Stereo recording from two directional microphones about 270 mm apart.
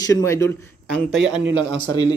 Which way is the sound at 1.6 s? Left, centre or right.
Right.